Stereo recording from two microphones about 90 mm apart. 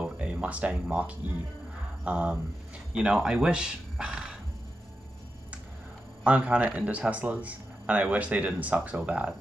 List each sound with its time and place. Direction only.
0.0 s speech: 15° right (ahead or behind)
6.2 s speech: 15° right (ahead or behind)